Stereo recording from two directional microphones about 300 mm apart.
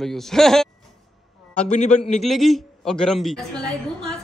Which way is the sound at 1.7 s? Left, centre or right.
Left.